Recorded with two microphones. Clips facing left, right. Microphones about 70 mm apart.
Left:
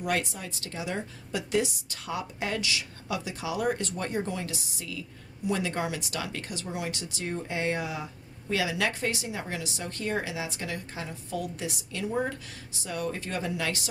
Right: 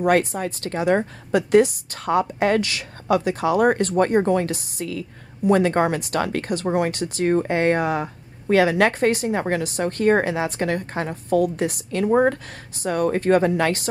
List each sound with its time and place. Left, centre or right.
0.0 s a woman's voice: right